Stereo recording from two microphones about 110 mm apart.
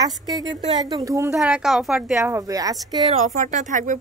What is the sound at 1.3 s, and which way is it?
Speech, 5° right (ahead or behind).